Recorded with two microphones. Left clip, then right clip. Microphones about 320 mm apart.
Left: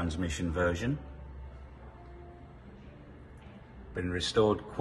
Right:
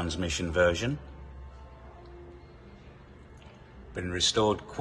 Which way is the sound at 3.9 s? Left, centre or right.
Centre.